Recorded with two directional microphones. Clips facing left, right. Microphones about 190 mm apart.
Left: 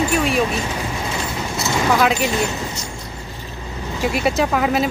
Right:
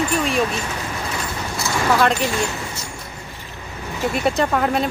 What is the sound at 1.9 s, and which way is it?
Speech, centre (ahead or behind).